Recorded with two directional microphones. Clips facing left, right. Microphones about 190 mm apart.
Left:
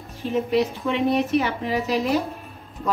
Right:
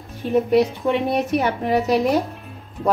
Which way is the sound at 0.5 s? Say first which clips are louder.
Right 4 dB; 55° right (ahead or behind).